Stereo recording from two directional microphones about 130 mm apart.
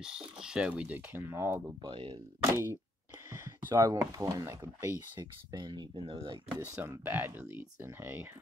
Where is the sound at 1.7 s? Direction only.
40° right (ahead or behind).